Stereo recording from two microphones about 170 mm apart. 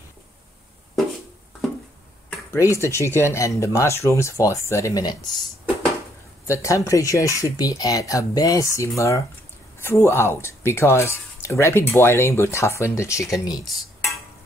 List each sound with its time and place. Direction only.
2.2 s speech: 15° left (ahead or behind)
6.4 s speech: 15° left (ahead or behind)